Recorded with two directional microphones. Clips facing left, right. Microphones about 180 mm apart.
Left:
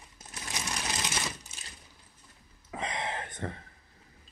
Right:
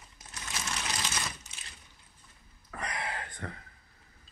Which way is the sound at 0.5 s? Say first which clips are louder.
Left 1 dB; 20° left (ahead or behind).